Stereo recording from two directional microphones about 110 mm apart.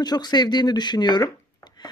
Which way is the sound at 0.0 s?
40° left (ahead or behind).